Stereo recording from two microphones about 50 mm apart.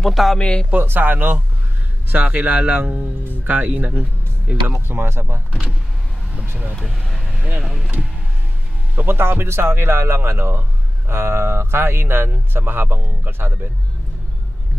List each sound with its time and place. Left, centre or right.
0.0 s speech: centre
0.4 s speech: centre
0.7 s speech: right
4.7 s speech: right
6.7 s speech: centre
8.9 s speech: right